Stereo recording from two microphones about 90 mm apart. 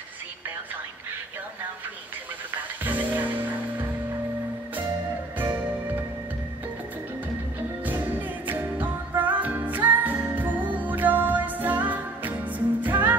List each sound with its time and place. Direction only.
2.8 s music: 20° right (ahead or behind)
5.4 s music: 20° right (ahead or behind)
8.5 s music: 20° right (ahead or behind)